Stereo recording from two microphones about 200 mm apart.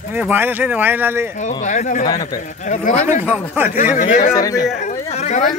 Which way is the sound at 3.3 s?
10° right (ahead or behind).